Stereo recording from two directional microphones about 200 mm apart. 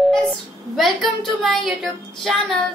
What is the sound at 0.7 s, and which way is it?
Speech, centre (ahead or behind).